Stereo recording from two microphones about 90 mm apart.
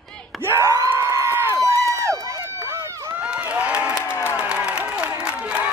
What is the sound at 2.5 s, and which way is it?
Run, 35° right (ahead or behind).